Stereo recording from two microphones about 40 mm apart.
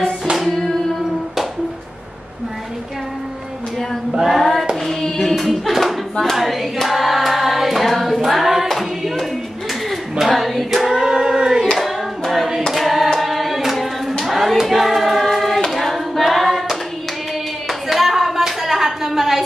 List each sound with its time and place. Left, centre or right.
4.3 s hands: centre
5.3 s hands: centre
6.3 s choir: centre
8.6 s hands: centre
9.8 s singing: centre
11.7 s hands: centre
17.8 s a sound: centre